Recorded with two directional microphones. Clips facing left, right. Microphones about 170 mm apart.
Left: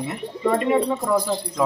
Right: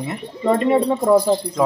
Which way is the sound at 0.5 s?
30° right (ahead or behind).